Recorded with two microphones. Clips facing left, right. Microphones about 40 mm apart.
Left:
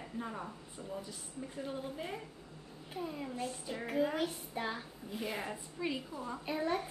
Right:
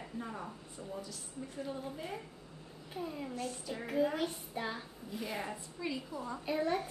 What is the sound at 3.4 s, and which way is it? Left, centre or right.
A woman's voice, centre.